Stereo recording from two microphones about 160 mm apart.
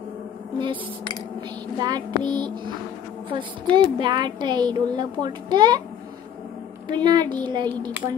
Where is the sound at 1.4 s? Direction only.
25° right (ahead or behind).